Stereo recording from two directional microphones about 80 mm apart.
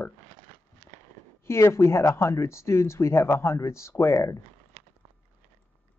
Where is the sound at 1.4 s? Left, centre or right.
Left.